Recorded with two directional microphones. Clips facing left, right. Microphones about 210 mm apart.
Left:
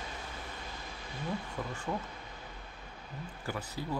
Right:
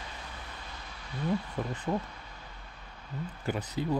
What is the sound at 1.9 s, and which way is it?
Speech, 15° right (ahead or behind).